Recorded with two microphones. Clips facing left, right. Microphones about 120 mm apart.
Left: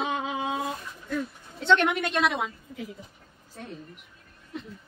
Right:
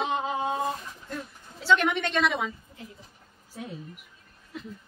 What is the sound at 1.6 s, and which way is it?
Speech, 5° right (ahead or behind).